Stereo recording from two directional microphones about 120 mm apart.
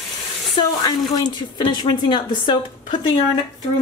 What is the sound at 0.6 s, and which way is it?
Speech, 35° left (ahead or behind).